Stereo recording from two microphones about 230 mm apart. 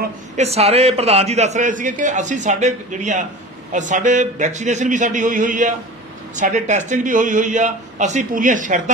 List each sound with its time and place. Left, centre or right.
0.4 s a man's voice: right